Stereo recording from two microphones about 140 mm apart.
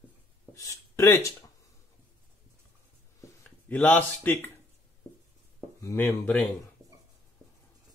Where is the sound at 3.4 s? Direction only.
10° left (ahead or behind).